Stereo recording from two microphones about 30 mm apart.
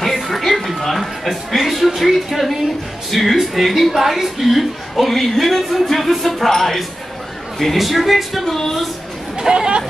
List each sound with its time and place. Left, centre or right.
0.0 s a sound: centre
1.6 s speech: centre
4.0 s a woman's voice: centre
4.4 s speech: centre
7.5 s speech: centre
8.5 s a sound: centre
9.5 s speech: right